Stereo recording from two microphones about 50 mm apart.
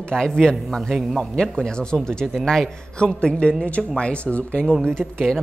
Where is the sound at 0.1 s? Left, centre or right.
Centre.